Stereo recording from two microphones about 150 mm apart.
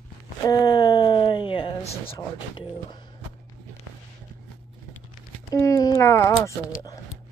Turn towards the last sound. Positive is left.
turn(degrees=20)  # may be behind; listen again after turning